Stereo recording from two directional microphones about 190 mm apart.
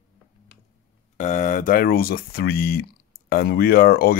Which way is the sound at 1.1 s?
40° left (ahead or behind).